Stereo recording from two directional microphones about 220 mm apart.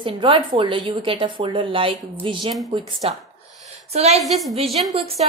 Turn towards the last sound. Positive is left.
turn(degrees=-25)  # may be behind; listen again after turning